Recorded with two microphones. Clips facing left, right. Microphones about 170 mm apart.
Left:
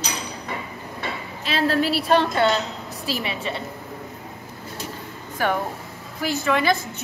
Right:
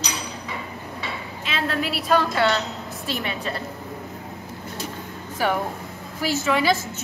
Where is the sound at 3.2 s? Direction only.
Centre (ahead or behind).